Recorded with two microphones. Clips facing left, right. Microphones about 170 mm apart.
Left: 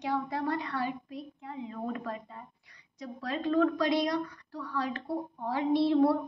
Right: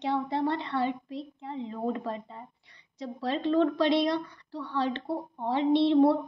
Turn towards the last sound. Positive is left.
turn(degrees=-20)  # may be behind; listen again after turning